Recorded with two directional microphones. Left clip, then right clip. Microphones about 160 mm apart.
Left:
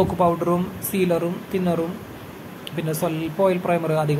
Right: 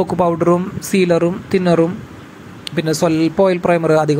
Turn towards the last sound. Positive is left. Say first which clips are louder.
# right 8 dB
turn(degrees=-40)  # may be behind; listen again after turning